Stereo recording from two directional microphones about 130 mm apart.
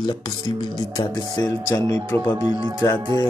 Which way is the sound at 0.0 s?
35° left (ahead or behind).